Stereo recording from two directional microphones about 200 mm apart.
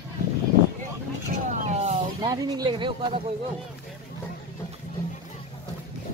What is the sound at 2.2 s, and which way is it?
Speech, 20° right (ahead or behind).